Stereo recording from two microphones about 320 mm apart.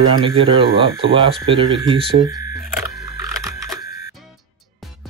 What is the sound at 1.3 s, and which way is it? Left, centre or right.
Speech, centre.